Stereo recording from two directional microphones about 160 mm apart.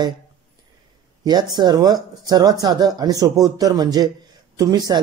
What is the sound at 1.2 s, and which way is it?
Speech, 25° right (ahead or behind).